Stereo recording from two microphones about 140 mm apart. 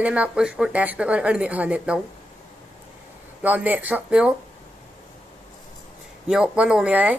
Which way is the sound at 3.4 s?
10° right (ahead or behind).